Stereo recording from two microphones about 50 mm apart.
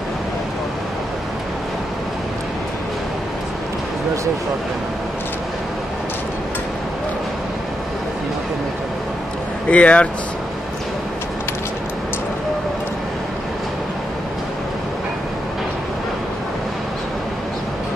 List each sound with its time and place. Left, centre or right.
9.7 s speech: left